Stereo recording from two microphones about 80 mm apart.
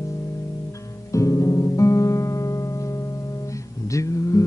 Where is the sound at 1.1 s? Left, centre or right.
Left.